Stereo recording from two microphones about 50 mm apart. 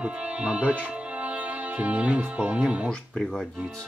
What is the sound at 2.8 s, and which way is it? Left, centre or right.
Speech, centre.